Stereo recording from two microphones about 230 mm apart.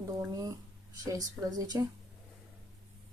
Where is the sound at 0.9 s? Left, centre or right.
Centre.